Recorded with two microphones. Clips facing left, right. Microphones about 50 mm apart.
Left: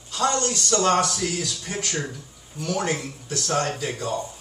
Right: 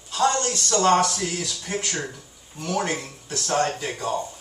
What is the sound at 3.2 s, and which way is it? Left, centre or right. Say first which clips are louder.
Speech: right 2 dB; right.